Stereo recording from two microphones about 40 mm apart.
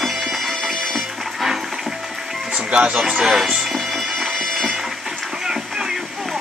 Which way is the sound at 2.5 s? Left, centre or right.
Right.